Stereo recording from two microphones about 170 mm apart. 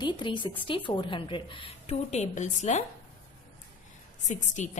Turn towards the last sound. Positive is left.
turn(degrees=45)  # may be behind; listen again after turning